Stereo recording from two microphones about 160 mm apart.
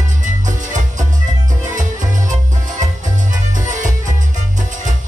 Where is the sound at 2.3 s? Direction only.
50° right (ahead or behind).